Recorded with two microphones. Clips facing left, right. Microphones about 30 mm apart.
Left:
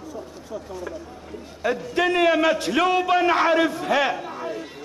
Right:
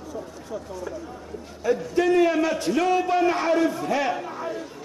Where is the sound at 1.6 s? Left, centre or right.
Left.